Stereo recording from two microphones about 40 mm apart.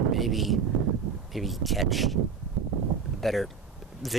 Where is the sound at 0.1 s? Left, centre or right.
Centre.